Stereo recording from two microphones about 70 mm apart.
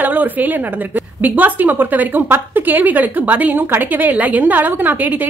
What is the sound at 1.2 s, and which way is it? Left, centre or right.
A woman's voice, right.